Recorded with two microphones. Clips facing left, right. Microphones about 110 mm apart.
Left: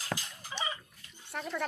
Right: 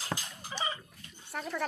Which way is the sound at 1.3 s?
Centre (ahead or behind).